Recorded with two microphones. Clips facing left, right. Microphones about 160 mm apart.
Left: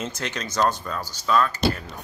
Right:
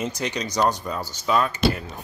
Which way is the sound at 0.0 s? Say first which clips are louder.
Right 3 dB; 15° right (ahead or behind).